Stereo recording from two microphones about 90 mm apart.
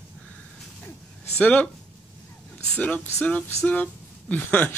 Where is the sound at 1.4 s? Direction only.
15° left (ahead or behind).